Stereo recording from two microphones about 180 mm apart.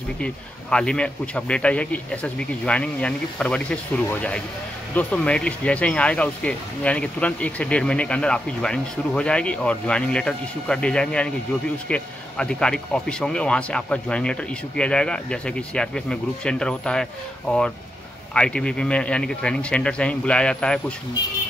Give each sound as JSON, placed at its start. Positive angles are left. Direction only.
{"t": 0.2, "sound": "speech", "side_deg": 5}